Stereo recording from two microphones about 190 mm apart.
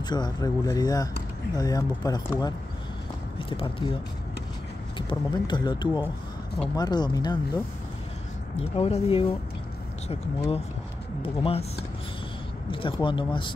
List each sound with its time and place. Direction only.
0.0 s speech: 20° left (ahead or behind)
4.9 s speech: 25° left (ahead or behind)
8.5 s speech: 30° left (ahead or behind)
11.2 s speech: 30° left (ahead or behind)
12.7 s speech: 25° left (ahead or behind)